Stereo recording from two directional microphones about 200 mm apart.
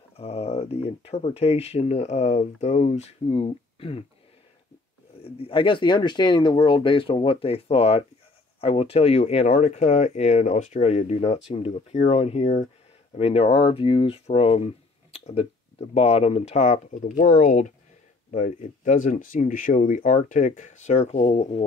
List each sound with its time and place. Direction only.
0.2 s speech: 30° left (ahead or behind)
5.2 s speech: 25° left (ahead or behind)